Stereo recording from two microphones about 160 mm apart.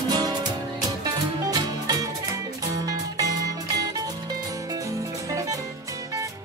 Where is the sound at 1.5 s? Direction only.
25° right (ahead or behind).